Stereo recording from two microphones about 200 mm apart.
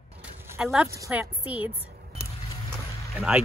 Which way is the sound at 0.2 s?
5° right (ahead or behind).